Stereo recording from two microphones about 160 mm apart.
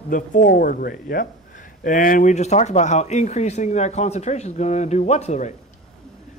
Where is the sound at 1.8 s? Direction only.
55° left (ahead or behind).